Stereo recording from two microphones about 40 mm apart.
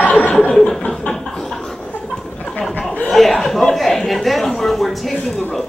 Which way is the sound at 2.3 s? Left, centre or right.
Left.